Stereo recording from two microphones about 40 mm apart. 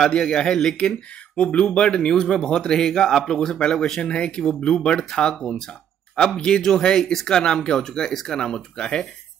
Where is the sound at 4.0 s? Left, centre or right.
Left.